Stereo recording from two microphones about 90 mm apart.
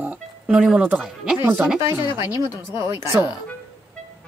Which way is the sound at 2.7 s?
25° right (ahead or behind).